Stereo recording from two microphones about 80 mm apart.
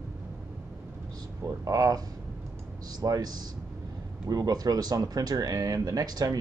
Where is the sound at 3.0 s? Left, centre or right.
Right.